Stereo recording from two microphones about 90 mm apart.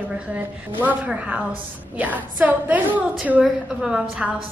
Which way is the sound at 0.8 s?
20° right (ahead or behind).